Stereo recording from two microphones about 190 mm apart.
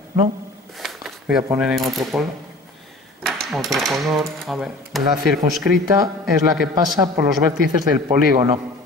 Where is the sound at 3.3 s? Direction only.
Centre (ahead or behind).